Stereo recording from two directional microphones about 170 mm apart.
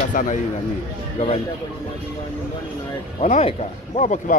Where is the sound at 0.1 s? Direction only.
50° left (ahead or behind).